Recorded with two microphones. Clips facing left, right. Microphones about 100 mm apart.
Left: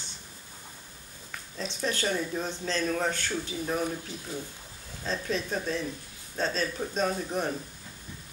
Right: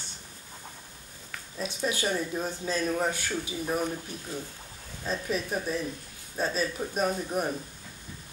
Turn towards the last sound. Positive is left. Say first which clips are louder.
# right 1 dB
turn(degrees=-10)  # may be behind; listen again after turning